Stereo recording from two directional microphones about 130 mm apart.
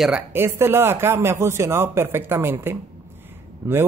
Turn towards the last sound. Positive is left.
turn(degrees=-25)  # may be behind; listen again after turning